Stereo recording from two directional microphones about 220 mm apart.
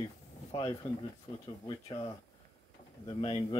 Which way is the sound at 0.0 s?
20° left (ahead or behind).